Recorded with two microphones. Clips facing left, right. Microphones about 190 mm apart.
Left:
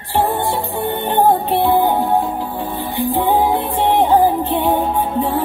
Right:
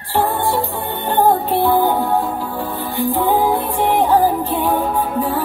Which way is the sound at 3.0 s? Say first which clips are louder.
Even; 20° left (ahead or behind).